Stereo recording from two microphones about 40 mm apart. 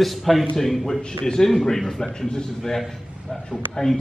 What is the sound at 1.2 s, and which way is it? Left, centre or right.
A man's voice, centre.